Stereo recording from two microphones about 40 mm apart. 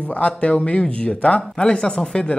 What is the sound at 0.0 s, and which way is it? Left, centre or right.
Speech, left.